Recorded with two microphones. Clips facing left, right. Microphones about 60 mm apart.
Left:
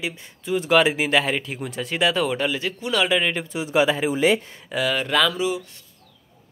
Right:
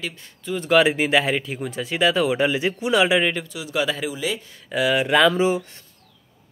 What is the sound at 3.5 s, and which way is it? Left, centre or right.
Speech, left.